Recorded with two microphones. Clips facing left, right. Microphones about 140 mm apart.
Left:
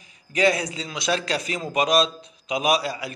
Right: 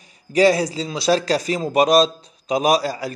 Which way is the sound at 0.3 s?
35° right (ahead or behind).